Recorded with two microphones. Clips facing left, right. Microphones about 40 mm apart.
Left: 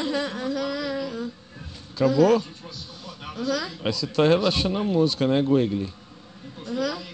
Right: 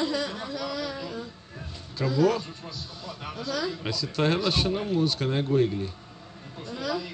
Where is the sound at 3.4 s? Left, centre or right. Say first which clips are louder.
Left 4 dB; left.